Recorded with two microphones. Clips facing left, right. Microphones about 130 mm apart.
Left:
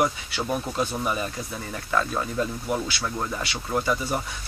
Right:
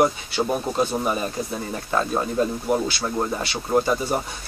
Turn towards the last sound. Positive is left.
turn(degrees=-30)  # may be behind; listen again after turning